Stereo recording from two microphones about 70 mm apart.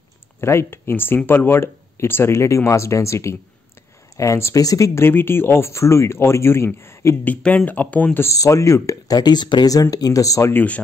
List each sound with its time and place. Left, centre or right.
0.4 s speech: left
5.0 s speech: left
7.2 s speech: left
8.4 s speech: left
9.1 s speech: left
10.5 s speech: left